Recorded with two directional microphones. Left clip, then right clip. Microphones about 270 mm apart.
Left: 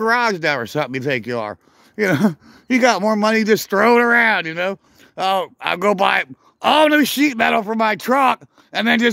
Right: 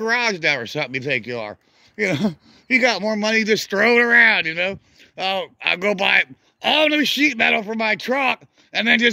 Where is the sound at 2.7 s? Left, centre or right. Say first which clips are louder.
Left 2 dB; left.